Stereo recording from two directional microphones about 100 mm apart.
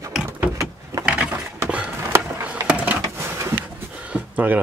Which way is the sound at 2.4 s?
15° right (ahead or behind).